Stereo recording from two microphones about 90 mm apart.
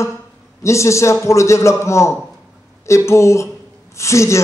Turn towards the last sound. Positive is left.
turn(degrees=35)  # may be behind; listen again after turning